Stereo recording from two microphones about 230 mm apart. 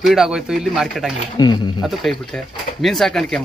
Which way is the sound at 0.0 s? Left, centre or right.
Centre.